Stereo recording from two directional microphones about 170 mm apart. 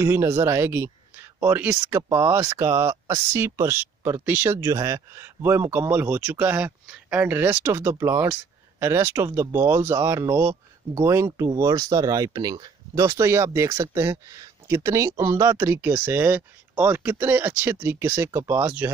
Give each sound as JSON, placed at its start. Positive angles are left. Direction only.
{"t": 0.0, "sound": "speech", "side_deg": -15}